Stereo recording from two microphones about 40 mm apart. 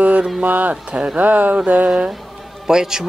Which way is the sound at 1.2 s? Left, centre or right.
Right.